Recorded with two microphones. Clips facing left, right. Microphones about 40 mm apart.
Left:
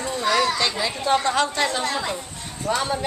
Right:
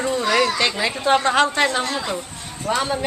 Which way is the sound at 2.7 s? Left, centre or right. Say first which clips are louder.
Right 2 dB; centre.